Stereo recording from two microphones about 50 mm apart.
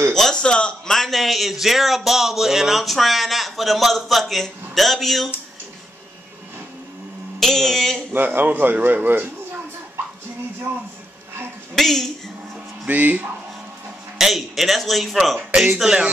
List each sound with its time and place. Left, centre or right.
0.1 s a man's voice: centre
0.9 s speech: centre
7.3 s a man's voice: centre
8.1 s speech: right
11.7 s a man's voice: centre
12.8 s speech: right
14.1 s speech: centre
15.7 s a sound: centre